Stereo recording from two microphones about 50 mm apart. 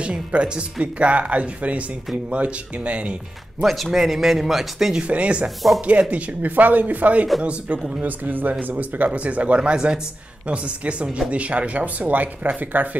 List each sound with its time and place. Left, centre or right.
0.0 s speech: right
3.6 s speech: centre
5.0 s speech: right
8.0 s speech: right